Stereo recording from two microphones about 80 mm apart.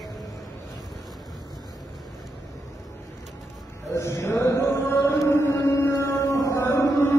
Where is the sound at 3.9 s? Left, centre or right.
Left.